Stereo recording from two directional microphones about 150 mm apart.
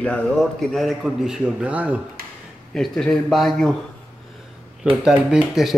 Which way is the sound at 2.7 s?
5° left (ahead or behind).